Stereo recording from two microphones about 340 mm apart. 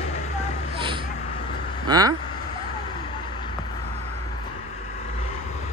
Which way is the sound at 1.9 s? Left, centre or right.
Centre.